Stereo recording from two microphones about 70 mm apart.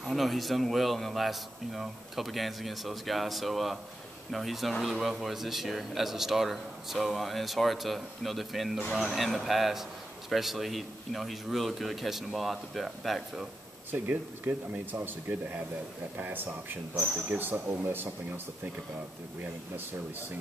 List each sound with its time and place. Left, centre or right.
0.0 s a man's voice: centre
13.9 s speech: right